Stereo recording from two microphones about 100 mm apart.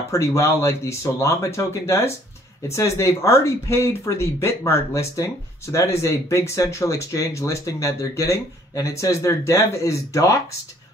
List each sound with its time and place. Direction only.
0.1 s speech: 30° left (ahead or behind)